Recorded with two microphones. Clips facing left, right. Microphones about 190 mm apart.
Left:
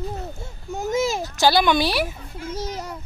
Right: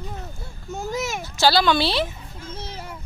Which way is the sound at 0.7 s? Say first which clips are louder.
Left 5 dB; 20° left (ahead or behind).